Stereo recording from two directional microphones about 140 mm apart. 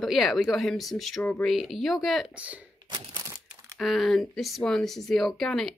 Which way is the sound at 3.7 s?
Centre (ahead or behind).